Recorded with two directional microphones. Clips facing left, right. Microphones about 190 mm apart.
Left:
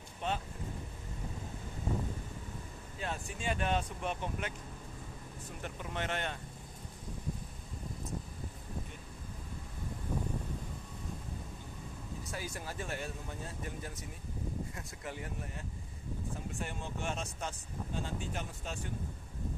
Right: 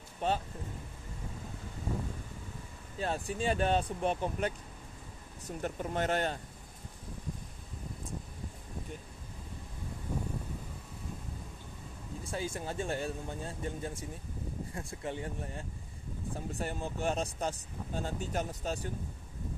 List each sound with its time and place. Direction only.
0.2 s speech: 40° right (ahead or behind)
3.0 s speech: 35° right (ahead or behind)
5.6 s speech: 40° right (ahead or behind)
12.2 s speech: 25° right (ahead or behind)